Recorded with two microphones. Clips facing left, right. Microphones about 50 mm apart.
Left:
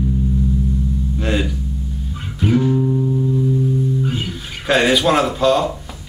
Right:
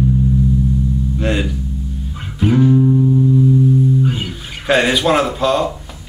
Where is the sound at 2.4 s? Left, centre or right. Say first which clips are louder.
Right 4 dB; centre.